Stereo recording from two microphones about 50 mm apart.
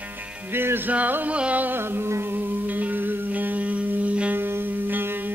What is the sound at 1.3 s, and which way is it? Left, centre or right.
Music, right.